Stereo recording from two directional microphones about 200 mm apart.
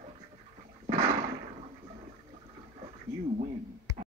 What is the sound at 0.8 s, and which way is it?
Toilet flush, 30° right (ahead or behind).